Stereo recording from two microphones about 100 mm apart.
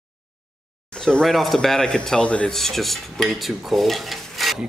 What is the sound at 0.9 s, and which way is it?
Speech, 5° left (ahead or behind).